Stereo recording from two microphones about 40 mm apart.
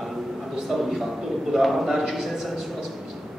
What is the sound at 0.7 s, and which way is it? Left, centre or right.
A woman's voice, centre.